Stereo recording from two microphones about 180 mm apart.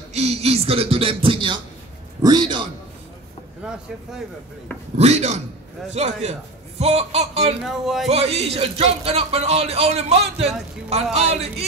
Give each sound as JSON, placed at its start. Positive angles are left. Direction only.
{"t": 0.1, "sound": "a man's voice", "side_deg": -35}
{"t": 4.9, "sound": "a man's voice", "side_deg": -40}
{"t": 7.6, "sound": "speech", "side_deg": 0}
{"t": 8.1, "sound": "a man's voice", "side_deg": -35}